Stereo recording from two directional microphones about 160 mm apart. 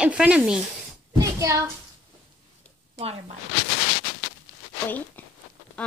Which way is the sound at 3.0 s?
40° right (ahead or behind).